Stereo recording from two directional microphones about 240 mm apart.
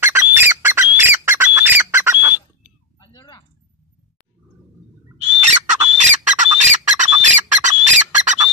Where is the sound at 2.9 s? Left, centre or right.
Centre.